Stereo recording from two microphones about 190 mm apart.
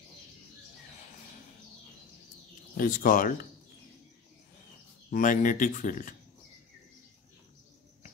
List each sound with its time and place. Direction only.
2.8 s speech: 45° left (ahead or behind)
5.1 s speech: 45° left (ahead or behind)